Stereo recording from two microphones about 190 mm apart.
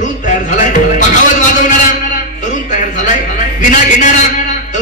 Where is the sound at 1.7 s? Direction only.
40° left (ahead or behind).